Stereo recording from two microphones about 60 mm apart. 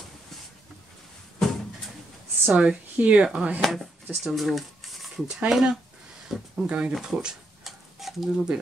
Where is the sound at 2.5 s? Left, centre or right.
Centre.